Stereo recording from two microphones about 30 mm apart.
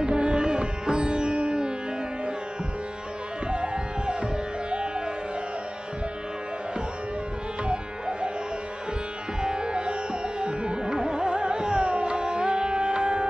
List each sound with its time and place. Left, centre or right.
0.0 s sitar: right
3.4 s music: right
7.6 s music: right
9.4 s music: right